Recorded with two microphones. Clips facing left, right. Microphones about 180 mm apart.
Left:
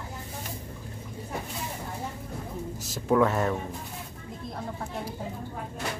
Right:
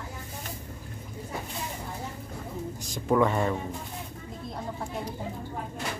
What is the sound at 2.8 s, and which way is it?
Speech, centre (ahead or behind).